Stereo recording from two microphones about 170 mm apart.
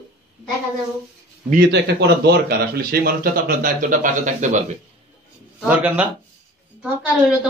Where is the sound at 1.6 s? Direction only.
80° right; by 4.6 s 45° right (ahead or behind).